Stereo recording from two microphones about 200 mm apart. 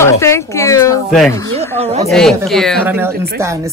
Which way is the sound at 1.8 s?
35° right (ahead or behind).